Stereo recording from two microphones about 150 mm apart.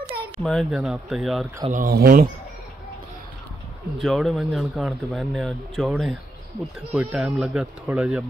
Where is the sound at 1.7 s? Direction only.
75° right (ahead or behind).